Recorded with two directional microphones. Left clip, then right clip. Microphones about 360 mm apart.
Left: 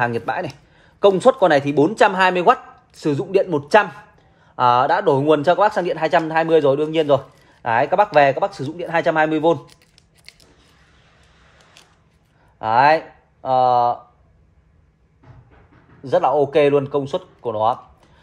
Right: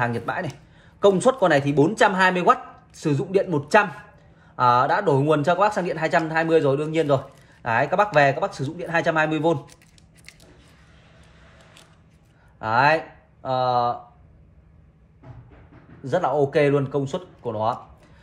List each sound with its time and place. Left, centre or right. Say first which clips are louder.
0.0 s speech: left 4 dB; left
12.5 s speech: left 4 dB; left
16.0 s speech: left 5 dB; centre